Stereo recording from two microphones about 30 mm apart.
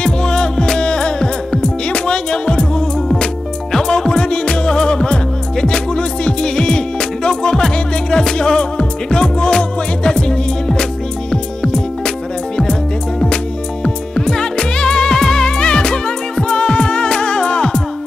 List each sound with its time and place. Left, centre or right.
0.0 s music: left
3.7 s music: centre
4.1 s music: left
14.1 s music: left